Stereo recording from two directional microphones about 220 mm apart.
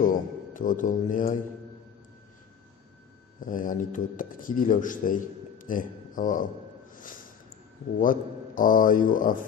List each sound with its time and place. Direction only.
0.0 s speech: 35° left (ahead or behind)
3.3 s speech: 35° left (ahead or behind)
8.0 s speech: 40° left (ahead or behind)